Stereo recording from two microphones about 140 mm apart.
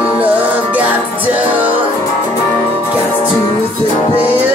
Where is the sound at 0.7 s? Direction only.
10° right (ahead or behind).